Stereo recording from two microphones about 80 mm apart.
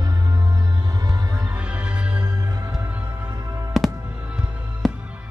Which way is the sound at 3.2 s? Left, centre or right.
Right.